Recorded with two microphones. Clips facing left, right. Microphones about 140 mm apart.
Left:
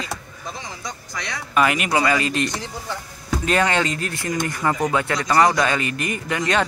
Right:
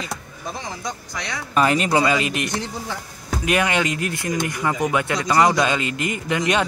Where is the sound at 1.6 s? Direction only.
30° right (ahead or behind).